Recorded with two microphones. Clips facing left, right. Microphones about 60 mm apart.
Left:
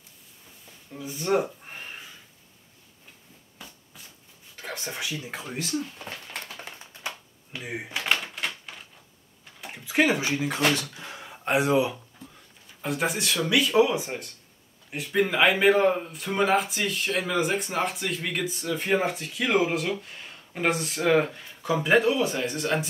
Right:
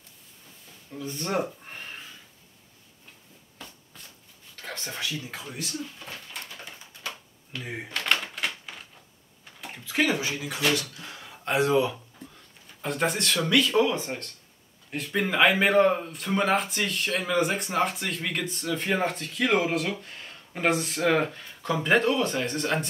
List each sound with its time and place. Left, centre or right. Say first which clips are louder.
0.9 s speech: left 3 dB; centre
4.6 s a sound: left 1 dB; centre
5.1 s speech: left 2 dB; left
7.0 s typewriter: left 1 dB; left
7.6 s speech: left 1 dB; centre
8.7 s a sound: right 1 dB; centre
9.7 s speech: left 3 dB; centre
12.8 s speech: even; centre